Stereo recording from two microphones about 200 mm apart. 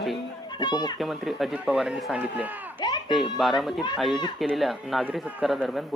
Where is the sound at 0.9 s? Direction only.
Centre (ahead or behind).